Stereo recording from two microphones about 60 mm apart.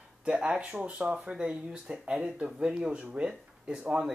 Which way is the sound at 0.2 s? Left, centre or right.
Centre.